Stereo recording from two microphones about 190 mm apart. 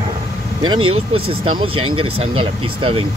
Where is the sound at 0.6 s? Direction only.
25° right (ahead or behind).